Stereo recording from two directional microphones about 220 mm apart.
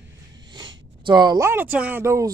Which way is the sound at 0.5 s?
20° right (ahead or behind).